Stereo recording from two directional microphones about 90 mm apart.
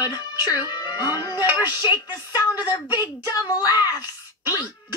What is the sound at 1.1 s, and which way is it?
Music, 50° left (ahead or behind).